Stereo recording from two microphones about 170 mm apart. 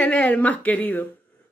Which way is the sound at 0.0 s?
5° left (ahead or behind).